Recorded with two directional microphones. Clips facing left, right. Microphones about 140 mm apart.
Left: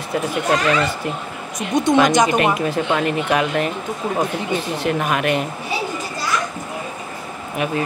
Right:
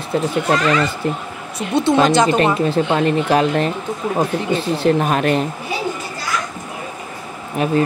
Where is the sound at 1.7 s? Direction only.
15° left (ahead or behind).